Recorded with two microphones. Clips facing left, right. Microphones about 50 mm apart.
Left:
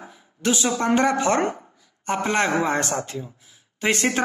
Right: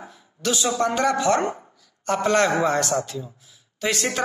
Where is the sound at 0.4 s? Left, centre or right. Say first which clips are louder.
Even; left.